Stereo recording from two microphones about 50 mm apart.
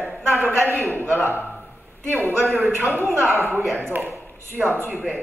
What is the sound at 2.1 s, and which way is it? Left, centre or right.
A man's voice, right.